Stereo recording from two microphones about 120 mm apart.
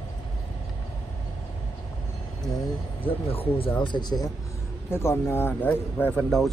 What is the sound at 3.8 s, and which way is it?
Speech, 35° left (ahead or behind).